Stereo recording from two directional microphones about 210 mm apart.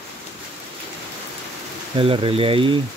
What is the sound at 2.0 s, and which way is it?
Speech, 25° right (ahead or behind).